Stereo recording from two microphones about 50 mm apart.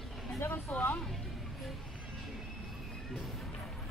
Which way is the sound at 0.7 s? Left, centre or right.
Left.